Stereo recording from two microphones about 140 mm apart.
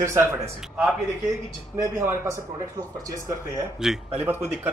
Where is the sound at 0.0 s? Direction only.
20° right (ahead or behind).